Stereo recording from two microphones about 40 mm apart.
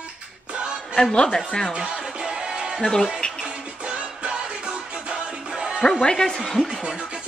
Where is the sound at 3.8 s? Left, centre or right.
Right.